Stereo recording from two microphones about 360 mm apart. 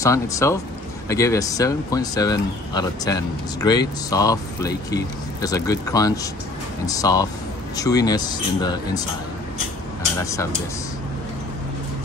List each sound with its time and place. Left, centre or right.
0.0 s speech: centre
10.1 s speech: centre